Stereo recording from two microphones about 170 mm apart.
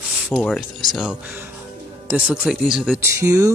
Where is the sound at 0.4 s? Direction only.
5° left (ahead or behind).